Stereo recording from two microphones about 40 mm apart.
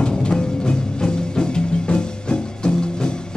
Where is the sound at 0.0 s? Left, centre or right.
Left.